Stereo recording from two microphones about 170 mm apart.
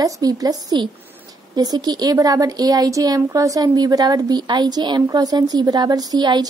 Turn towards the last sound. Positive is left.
turn(degrees=-25)  # may be behind; listen again after turning